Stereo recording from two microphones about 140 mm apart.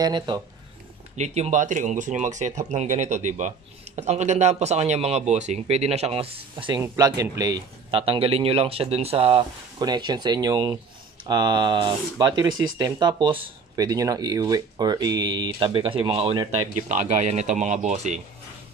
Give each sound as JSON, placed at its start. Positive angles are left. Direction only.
{"t": 0.0, "sound": "speech", "side_deg": -30}
{"t": 1.1, "sound": "speech", "side_deg": -50}
{"t": 6.8, "sound": "speech", "side_deg": -25}
{"t": 7.9, "sound": "speech", "side_deg": -40}
{"t": 9.8, "sound": "speech", "side_deg": -30}
{"t": 16.9, "sound": "speech", "side_deg": -60}